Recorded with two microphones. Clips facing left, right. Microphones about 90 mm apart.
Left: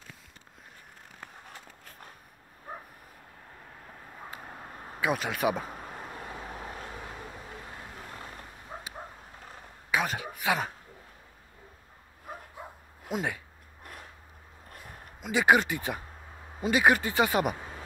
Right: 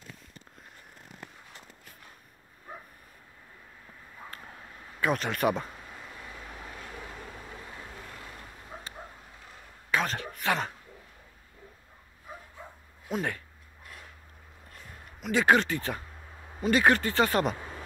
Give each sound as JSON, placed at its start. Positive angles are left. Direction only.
{"t": 4.6, "sound": "a sound", "side_deg": 45}
{"t": 5.0, "sound": "speech", "side_deg": 5}
{"t": 5.7, "sound": "a sound", "side_deg": 50}
{"t": 6.9, "sound": "vehicle", "side_deg": 15}
{"t": 7.3, "sound": "vehicle", "side_deg": 5}
{"t": 8.6, "sound": "bow-wow", "side_deg": 15}
{"t": 9.8, "sound": "a sound", "side_deg": 10}
{"t": 13.1, "sound": "speech", "side_deg": 10}
{"t": 15.2, "sound": "speech", "side_deg": 10}